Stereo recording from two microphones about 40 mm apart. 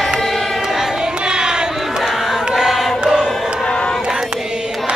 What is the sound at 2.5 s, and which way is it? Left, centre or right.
Choir, centre.